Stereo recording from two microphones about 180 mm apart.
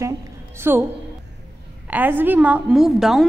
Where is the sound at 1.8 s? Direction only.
10° right (ahead or behind).